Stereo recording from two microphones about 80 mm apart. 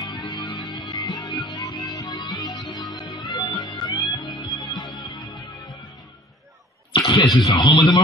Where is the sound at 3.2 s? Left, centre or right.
Left.